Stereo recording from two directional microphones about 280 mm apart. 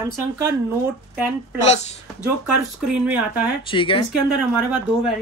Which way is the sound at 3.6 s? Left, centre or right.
Centre.